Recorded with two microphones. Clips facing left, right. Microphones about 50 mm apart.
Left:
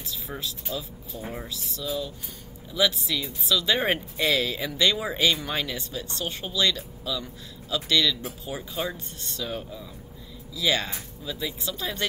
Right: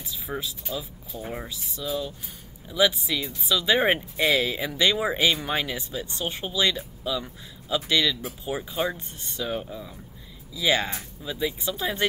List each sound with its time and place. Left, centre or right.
0.0 s speech: centre